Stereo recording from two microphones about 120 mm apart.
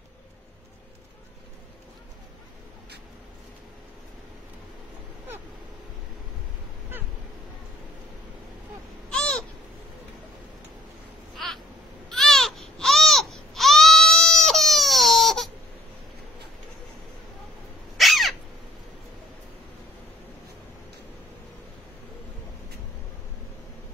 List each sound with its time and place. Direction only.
9.1 s owl: 5° left (ahead or behind)
11.3 s a sound: centre (ahead or behind)
12.1 s baby cry: centre (ahead or behind)
17.9 s crow: centre (ahead or behind)